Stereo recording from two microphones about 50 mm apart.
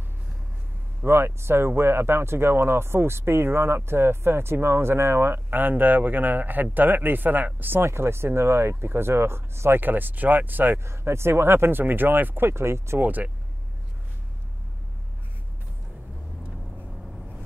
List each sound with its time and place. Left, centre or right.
1.0 s speech: right
7.8 s speech: right
10.8 s speech: right
11.8 s speech: right
13.0 s speech: right